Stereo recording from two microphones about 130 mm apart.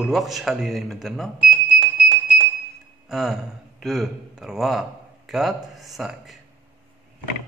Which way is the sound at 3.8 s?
Centre (ahead or behind).